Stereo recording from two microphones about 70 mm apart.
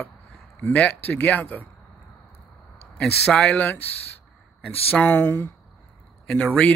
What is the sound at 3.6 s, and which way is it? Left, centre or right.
Speech, left.